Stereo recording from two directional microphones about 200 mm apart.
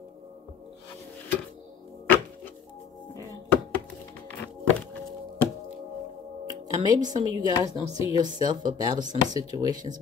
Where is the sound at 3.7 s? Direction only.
10° left (ahead or behind).